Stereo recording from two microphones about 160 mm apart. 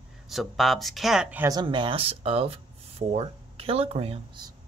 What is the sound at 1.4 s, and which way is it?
Speech, 25° right (ahead or behind).